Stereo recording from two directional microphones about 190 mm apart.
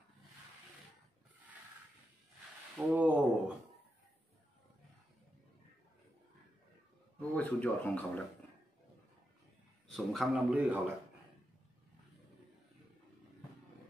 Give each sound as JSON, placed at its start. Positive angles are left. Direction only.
{"t": 2.9, "sound": "a sound", "side_deg": -10}
{"t": 7.2, "sound": "speech", "side_deg": 5}
{"t": 9.9, "sound": "a man's voice", "side_deg": 0}